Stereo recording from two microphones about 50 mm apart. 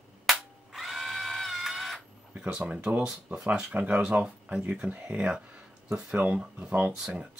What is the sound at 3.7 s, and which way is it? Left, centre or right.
Speech, right.